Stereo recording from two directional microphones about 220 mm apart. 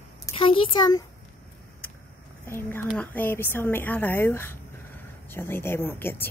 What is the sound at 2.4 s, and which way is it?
Speech, 10° left (ahead or behind).